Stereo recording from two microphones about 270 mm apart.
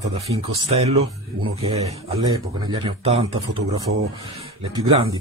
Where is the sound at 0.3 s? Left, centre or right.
Right.